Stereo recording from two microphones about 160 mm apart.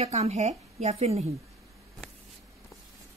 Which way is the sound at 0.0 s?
40° right (ahead or behind).